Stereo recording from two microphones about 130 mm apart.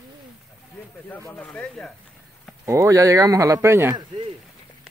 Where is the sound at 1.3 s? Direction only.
10° left (ahead or behind).